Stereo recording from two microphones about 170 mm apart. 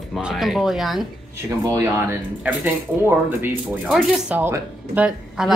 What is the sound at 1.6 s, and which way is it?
A woman's voice, 20° right (ahead or behind).